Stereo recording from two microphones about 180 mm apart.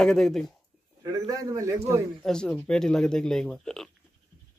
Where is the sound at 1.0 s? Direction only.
20° right (ahead or behind).